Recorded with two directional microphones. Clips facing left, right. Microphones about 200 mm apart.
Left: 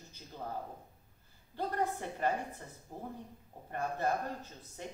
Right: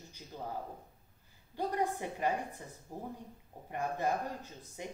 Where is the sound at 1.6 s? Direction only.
15° right (ahead or behind).